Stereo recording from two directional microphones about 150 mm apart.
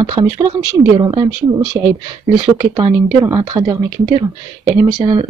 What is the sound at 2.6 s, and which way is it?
Speech, 25° right (ahead or behind).